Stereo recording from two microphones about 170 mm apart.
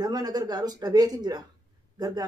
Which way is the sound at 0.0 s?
25° right (ahead or behind).